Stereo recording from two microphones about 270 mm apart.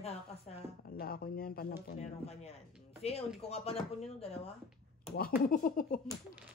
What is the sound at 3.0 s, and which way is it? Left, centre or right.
Speech, left.